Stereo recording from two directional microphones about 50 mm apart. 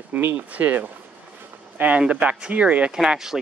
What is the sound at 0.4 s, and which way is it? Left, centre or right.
Speech, right.